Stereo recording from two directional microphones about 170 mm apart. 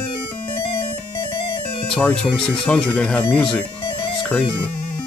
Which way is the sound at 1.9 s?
5° left (ahead or behind).